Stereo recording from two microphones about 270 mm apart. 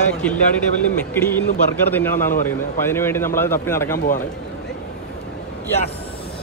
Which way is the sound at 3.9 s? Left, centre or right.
Left.